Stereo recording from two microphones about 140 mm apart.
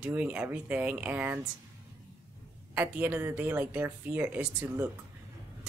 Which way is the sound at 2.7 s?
10° right (ahead or behind).